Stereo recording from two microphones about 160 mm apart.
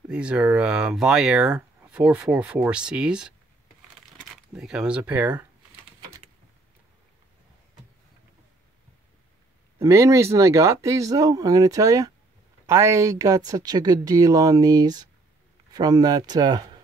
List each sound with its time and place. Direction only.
0.1 s speech: 5° right (ahead or behind)
4.6 s speech: 5° right (ahead or behind)
9.8 s speech: 20° right (ahead or behind)